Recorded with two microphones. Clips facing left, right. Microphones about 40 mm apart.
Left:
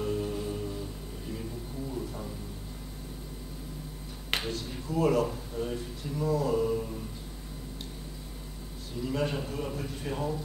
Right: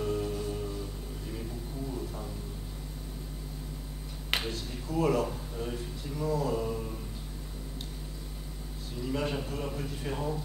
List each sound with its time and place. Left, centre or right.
0.0 s music: centre
1.9 s a sound: centre
4.3 s speech: centre
9.0 s a man's voice: centre